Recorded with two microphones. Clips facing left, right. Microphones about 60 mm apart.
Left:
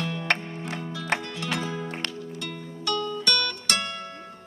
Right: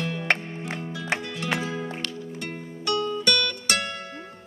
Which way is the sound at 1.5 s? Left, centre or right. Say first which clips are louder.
Right 2 dB; right.